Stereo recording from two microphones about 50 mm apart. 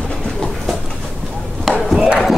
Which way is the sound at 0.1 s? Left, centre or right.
Centre.